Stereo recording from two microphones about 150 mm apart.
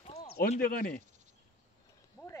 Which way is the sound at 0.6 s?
75° left (ahead or behind).